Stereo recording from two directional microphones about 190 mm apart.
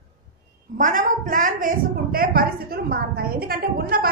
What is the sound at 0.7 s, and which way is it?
A woman's voice, 45° right (ahead or behind).